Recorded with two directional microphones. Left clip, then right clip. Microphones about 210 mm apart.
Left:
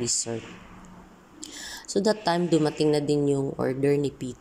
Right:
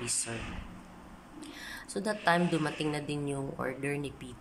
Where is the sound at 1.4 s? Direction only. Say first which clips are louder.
Left 5 dB; 25° left (ahead or behind).